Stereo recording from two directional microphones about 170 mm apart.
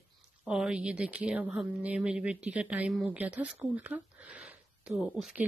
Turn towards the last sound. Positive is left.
turn(degrees=-5)  # may be behind; listen again after turning